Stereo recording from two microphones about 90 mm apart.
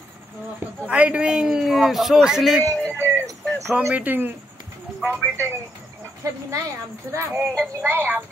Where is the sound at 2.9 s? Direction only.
25° right (ahead or behind).